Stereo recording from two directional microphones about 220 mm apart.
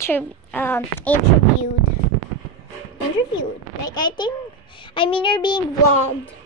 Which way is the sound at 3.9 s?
20° left (ahead or behind).